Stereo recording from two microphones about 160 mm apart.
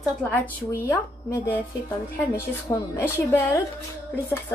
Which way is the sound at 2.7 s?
20° left (ahead or behind).